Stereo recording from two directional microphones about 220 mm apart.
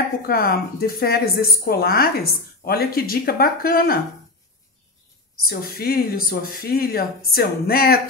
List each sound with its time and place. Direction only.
0.3 s speech: 45° left (ahead or behind)
5.5 s speech: 45° left (ahead or behind)